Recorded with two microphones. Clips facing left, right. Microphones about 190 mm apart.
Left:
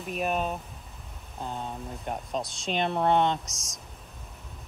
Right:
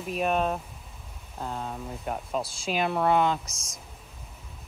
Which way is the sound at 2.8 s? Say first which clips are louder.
Even; 30° left (ahead or behind).